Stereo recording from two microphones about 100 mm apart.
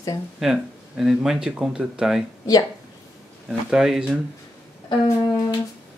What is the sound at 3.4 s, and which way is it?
Speech, 5° right (ahead or behind).